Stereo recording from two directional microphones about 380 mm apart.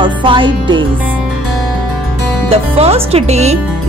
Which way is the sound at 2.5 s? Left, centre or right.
Centre.